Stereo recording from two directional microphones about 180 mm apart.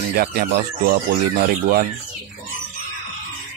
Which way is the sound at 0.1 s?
55° right (ahead or behind).